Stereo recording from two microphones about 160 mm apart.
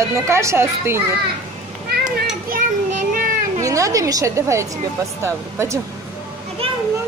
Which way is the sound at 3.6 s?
20° right (ahead or behind).